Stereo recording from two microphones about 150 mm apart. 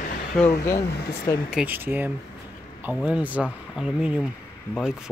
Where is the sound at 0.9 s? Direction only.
90° left.